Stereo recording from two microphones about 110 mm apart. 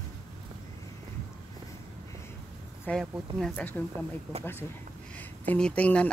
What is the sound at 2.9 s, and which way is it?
Speech, 10° left (ahead or behind).